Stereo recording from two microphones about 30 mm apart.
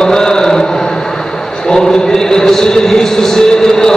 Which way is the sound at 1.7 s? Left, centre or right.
Left.